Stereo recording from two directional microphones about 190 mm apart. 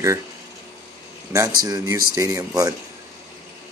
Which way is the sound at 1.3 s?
15° right (ahead or behind).